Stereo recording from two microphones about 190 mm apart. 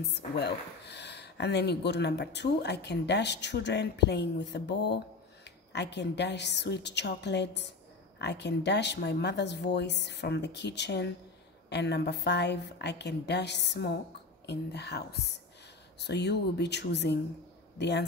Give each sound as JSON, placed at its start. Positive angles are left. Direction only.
{"t": 0.1, "sound": "speech", "side_deg": 60}